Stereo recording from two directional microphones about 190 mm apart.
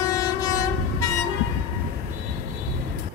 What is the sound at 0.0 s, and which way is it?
Train, 20° left (ahead or behind).